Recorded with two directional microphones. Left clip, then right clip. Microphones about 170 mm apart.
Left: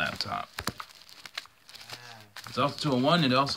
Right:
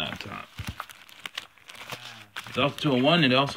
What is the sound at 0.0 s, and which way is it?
Music, 25° left (ahead or behind).